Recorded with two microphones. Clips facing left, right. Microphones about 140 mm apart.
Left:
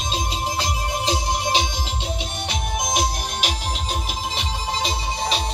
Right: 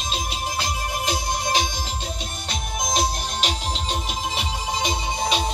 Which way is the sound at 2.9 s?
10° left (ahead or behind).